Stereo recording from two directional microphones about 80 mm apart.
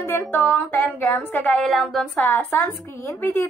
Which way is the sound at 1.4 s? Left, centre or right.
Centre.